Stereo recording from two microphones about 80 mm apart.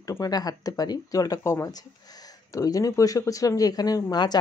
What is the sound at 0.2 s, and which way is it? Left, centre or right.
Speech, left.